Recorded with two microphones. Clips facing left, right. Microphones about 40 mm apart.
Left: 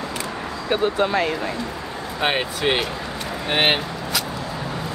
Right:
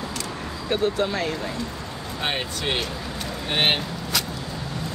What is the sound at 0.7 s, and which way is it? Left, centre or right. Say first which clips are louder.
Speech: left 3 dB; centre.